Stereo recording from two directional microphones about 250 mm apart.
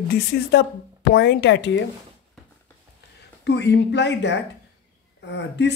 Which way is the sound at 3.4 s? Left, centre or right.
Left.